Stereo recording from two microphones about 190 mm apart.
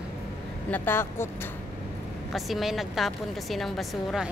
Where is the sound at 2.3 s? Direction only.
Centre (ahead or behind).